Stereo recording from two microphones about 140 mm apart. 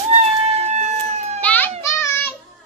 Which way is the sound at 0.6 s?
55° right (ahead or behind).